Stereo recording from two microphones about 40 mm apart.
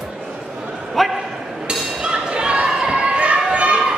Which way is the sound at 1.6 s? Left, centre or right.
Right.